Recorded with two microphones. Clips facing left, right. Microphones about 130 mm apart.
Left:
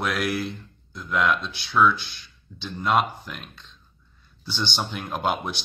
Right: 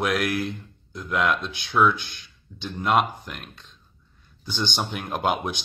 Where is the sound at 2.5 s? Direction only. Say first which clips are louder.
Right 1 dB; 20° right (ahead or behind).